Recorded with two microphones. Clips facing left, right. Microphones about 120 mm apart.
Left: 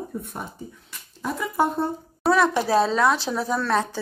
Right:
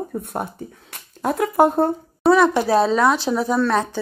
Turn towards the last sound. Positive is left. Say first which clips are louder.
# right 4 dB
turn(degrees=0)  # may be behind; listen again after turning